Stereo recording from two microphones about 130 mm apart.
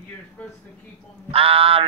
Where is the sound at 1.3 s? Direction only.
45° right (ahead or behind).